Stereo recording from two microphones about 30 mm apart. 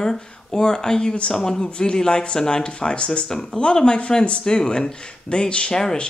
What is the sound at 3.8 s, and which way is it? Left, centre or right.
Speech, left.